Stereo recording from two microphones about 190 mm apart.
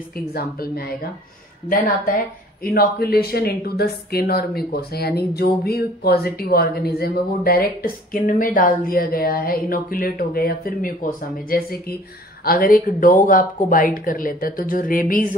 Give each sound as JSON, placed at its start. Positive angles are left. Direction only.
{"t": 0.3, "sound": "speech", "side_deg": 50}
{"t": 2.6, "sound": "speech", "side_deg": 55}